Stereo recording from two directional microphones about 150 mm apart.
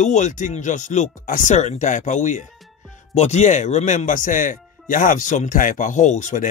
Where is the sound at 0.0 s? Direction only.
55° left (ahead or behind).